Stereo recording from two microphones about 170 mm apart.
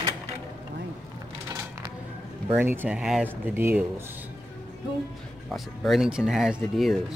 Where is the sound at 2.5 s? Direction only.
10° right (ahead or behind).